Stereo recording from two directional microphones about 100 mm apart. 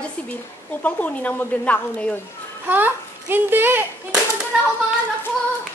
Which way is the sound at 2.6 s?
20° right (ahead or behind).